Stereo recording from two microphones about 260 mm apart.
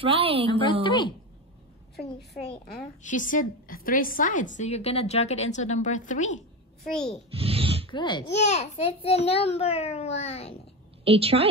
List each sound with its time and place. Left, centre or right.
0.0 s a woman's voice: right
0.8 s a woman's voice: centre
2.5 s a woman's voice: left
6.0 s a sound: left
6.9 s a child's voice: centre
7.3 s a sound: right
7.9 s a woman's voice: centre
11.1 s a woman's voice: right